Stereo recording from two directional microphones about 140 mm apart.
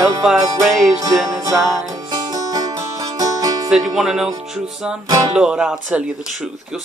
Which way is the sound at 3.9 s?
Centre (ahead or behind).